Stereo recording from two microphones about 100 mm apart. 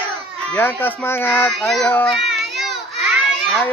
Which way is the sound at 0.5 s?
20° left (ahead or behind).